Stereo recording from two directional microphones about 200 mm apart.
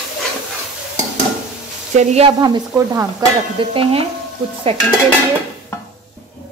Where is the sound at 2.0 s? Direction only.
30° right (ahead or behind).